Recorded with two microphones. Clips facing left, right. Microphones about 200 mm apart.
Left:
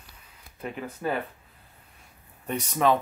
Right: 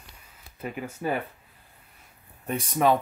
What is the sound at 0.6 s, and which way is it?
Speech, 5° right (ahead or behind).